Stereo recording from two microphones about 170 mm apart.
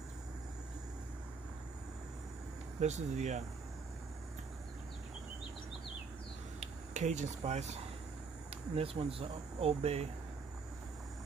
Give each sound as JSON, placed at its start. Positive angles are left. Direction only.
{"t": 2.8, "sound": "speech", "side_deg": -40}
{"t": 6.6, "sound": "speech", "side_deg": -45}